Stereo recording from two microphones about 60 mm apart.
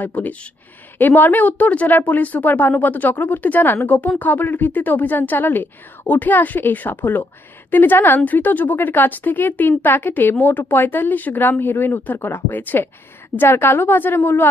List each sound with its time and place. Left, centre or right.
0.0 s speech: left